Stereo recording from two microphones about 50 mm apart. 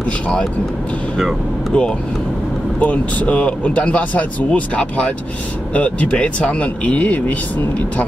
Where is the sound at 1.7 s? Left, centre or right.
Left.